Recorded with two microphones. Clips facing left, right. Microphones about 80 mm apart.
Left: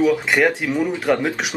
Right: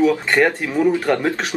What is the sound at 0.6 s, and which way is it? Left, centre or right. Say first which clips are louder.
Speech: right 3 dB; right.